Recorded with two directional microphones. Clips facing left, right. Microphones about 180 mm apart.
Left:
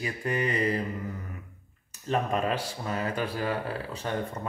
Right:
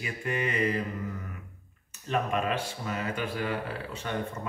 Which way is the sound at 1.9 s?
35° left (ahead or behind).